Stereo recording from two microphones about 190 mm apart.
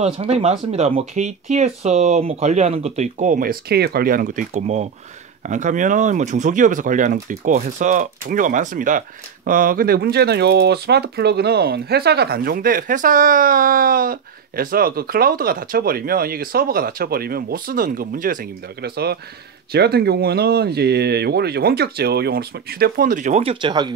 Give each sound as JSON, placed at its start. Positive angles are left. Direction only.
{"t": 0.0, "sound": "speech", "side_deg": -35}